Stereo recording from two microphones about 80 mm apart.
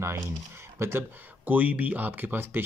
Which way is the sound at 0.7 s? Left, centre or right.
Right.